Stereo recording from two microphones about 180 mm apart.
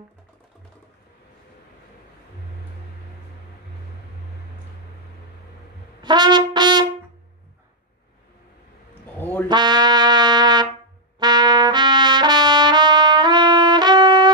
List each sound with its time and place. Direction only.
6.0 s brass instrument: 25° right (ahead or behind)
9.0 s a sound: 10° left (ahead or behind)
9.5 s trumpet: 25° right (ahead or behind)